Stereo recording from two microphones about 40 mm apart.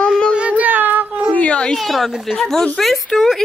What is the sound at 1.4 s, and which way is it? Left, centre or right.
Speech, left.